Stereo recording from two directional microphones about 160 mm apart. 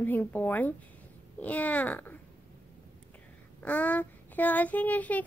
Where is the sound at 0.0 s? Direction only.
10° left (ahead or behind).